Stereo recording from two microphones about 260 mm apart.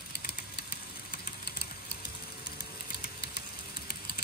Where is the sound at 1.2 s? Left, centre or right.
Left.